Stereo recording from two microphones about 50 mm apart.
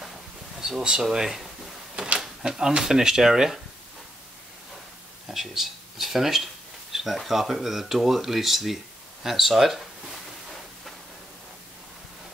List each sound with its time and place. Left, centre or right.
0.6 s speech: centre
5.3 s speech: centre